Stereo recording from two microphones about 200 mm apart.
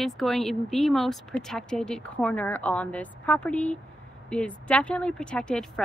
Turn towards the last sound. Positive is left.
turn(degrees=5)  # may be behind; listen again after turning